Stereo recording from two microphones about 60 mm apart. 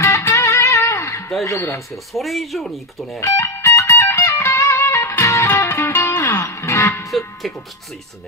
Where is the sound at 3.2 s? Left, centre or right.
Left.